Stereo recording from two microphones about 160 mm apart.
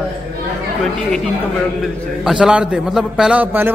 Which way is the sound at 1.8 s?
5° right (ahead or behind).